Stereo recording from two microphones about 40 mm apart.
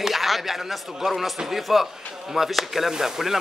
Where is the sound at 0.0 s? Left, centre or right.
Centre.